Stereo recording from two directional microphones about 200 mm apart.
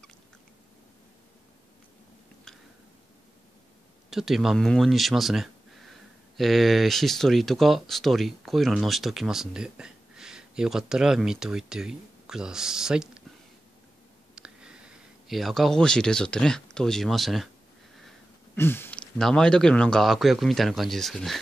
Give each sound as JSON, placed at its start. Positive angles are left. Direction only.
{"t": 4.1, "sound": "speech", "side_deg": 0}
{"t": 14.3, "sound": "speech", "side_deg": -5}
{"t": 18.6, "sound": "speech", "side_deg": 10}